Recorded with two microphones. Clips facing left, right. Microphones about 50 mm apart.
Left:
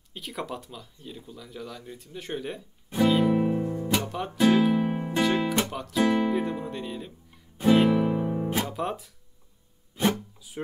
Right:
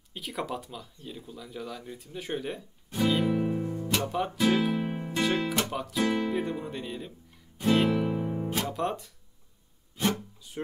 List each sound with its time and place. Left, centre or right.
0.1 s speech: centre
2.9 s music: centre
4.1 s music: centre
5.7 s speech: centre
7.5 s music: centre
8.6 s speech: centre